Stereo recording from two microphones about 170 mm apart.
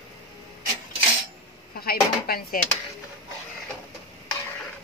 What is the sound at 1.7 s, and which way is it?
Speech, 65° left (ahead or behind).